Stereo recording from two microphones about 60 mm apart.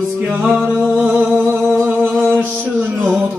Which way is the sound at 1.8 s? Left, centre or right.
Right.